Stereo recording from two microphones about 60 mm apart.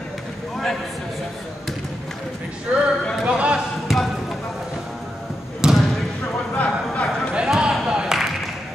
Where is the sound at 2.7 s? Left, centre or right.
Right.